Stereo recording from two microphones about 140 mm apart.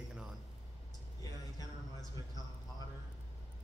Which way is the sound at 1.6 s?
25° left (ahead or behind).